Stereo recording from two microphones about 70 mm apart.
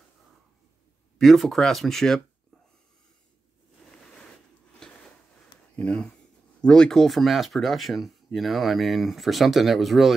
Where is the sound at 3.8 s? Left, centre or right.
Centre.